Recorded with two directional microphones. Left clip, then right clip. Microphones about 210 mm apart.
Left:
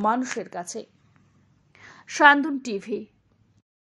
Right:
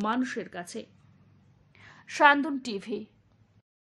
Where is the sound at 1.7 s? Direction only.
25° left (ahead or behind); by 3.0 s 5° left (ahead or behind).